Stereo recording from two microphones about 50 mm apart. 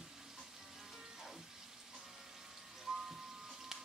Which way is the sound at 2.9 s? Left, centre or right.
Centre.